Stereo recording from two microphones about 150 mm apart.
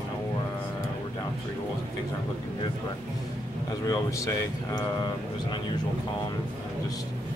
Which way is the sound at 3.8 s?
20° left (ahead or behind).